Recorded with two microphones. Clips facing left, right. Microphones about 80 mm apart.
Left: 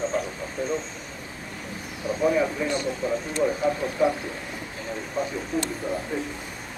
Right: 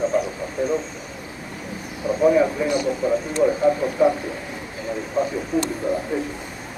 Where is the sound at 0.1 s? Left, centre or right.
Centre.